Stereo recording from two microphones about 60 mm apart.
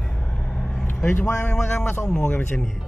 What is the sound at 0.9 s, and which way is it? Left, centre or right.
A man's voice, left.